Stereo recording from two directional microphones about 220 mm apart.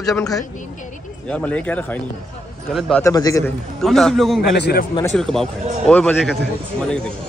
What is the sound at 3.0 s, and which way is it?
Speech, 15° left (ahead or behind).